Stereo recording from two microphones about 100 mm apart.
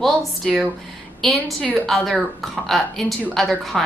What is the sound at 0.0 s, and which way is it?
A woman's voice, centre (ahead or behind).